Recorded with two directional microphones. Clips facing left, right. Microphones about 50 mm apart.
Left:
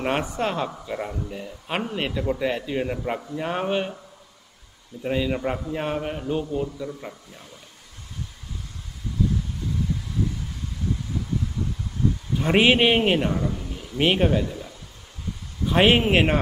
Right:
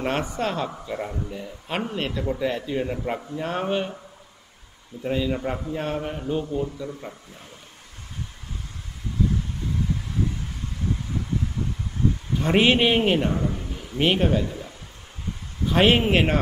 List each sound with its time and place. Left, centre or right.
0.0 s speech: centre
5.0 s a man's voice: centre
12.4 s speech: centre
13.4 s a man's voice: right
13.9 s speech: centre
14.4 s speech: centre
15.6 s speech: centre